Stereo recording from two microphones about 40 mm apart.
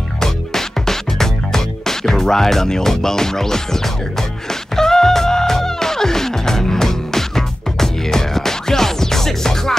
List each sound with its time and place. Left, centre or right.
0.2 s music: centre